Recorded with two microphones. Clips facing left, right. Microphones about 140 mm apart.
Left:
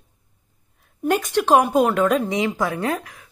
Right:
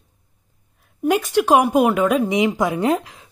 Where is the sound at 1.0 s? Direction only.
5° right (ahead or behind).